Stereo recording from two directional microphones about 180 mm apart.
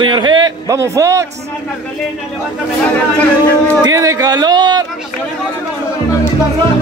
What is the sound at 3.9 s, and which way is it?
Speech, 20° right (ahead or behind).